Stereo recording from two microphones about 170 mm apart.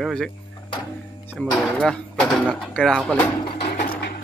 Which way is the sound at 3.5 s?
35° left (ahead or behind).